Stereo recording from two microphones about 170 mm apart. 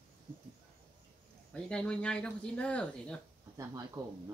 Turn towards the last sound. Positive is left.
turn(degrees=-20)  # may be behind; listen again after turning